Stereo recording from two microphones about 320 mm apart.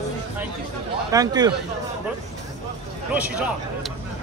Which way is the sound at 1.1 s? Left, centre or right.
Centre.